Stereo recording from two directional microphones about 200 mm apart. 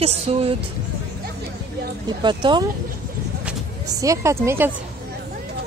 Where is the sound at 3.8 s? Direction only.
15° right (ahead or behind).